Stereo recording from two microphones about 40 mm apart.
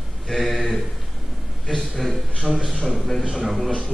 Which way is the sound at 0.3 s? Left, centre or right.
Centre.